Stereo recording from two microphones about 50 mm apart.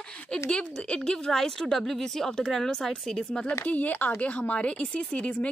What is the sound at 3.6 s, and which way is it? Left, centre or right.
Speech, left.